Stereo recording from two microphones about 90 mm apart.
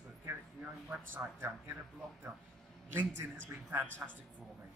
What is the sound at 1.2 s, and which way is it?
Speech, 25° right (ahead or behind).